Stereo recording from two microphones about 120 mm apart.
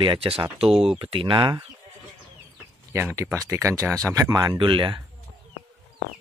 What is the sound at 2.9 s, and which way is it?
Speech, 20° right (ahead or behind).